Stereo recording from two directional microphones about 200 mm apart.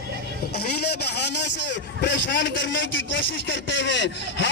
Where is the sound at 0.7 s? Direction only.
55° left (ahead or behind).